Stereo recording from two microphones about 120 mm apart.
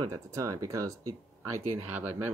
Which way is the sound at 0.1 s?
25° right (ahead or behind).